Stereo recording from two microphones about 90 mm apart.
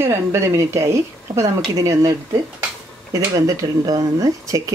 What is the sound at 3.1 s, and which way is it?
Speech, 40° right (ahead or behind).